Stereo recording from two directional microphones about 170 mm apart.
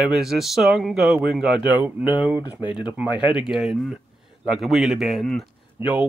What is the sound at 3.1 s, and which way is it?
Speech, 5° right (ahead or behind).